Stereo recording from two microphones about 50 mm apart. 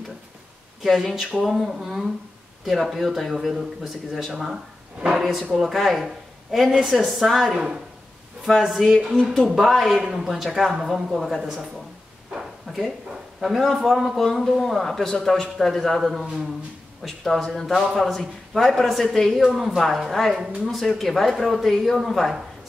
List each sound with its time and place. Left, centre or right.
0.8 s speech: centre
9.0 s a woman's voice: centre
9.3 s speech: centre
12.3 s a sound: centre
13.1 s speech: centre
19.4 s speech: centre